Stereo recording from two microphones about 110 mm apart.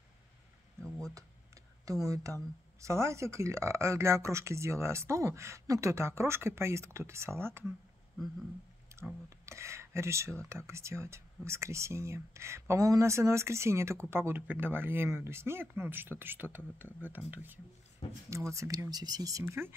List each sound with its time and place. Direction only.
0.8 s a sound: 5° left (ahead or behind)
1.1 s tick: 30° right (ahead or behind)
2.0 s speech: 30° right (ahead or behind)
9.3 s speech: 25° right (ahead or behind)
18.3 s speech: 25° right (ahead or behind)
19.4 s speech: 20° right (ahead or behind)